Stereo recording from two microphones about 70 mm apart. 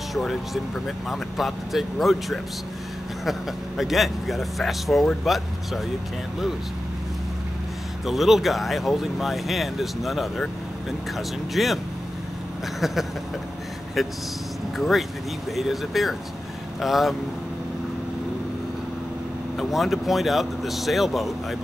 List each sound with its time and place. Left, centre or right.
0.1 s speech: centre
8.0 s speech: centre
14.0 s speech: centre
19.5 s speech: centre